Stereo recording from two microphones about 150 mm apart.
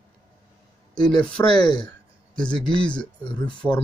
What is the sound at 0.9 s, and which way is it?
Speech, 5° left (ahead or behind).